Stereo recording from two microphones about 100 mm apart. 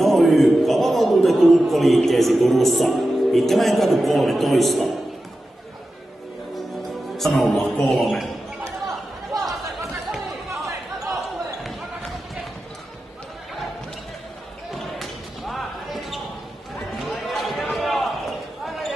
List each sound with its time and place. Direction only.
0.0 s a man's voice: centre (ahead or behind)
7.2 s speech: centre (ahead or behind)
9.3 s chatter: 40° right (ahead or behind)
14.7 s basketball bounce: centre (ahead or behind)